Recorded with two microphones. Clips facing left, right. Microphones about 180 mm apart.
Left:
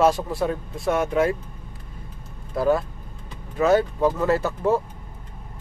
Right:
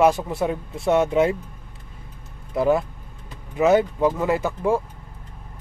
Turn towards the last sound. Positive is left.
turn(degrees=-10)  # may be behind; listen again after turning